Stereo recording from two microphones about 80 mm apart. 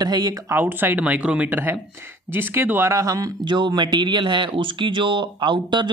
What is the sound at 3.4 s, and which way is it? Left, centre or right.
Speech, right.